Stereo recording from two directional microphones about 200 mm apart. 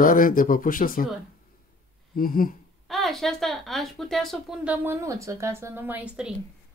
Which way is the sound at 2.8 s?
Centre (ahead or behind).